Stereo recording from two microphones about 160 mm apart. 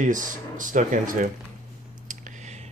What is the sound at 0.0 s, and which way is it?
Speech, 55° right (ahead or behind).